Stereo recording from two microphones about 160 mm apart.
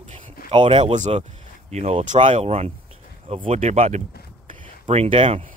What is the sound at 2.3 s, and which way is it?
Speech, 40° right (ahead or behind).